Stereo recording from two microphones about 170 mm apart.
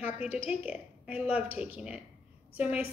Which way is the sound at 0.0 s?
10° right (ahead or behind).